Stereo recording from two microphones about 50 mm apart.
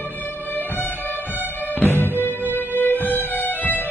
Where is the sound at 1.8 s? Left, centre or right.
Left.